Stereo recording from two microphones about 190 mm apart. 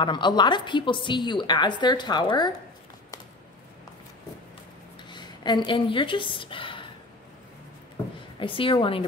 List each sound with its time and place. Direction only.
0.0 s a woman's voice: 25° left (ahead or behind)
5.1 s a woman's voice: 25° left (ahead or behind)
8.4 s a woman's voice: 25° left (ahead or behind)